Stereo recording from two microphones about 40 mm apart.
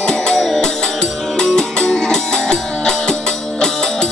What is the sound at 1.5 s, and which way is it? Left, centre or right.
Music, centre.